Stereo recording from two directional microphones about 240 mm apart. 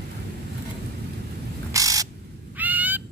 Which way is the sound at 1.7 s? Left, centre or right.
Centre.